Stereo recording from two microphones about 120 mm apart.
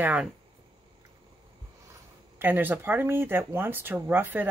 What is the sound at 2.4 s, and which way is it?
Speech, 15° right (ahead or behind).